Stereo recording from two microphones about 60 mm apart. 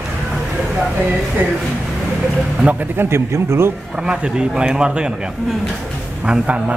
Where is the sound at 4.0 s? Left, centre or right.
Centre.